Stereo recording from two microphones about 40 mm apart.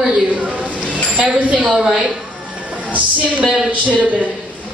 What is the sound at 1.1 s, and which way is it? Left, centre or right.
Speech, right.